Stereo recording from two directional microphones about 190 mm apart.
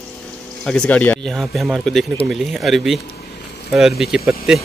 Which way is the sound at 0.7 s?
5° left (ahead or behind).